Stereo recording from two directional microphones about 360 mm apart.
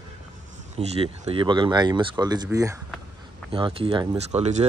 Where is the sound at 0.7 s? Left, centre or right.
Centre.